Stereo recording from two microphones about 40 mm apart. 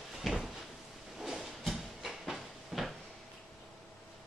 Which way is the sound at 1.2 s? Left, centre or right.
Centre.